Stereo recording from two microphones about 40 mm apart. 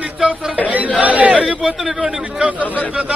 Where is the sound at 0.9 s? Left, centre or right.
Right.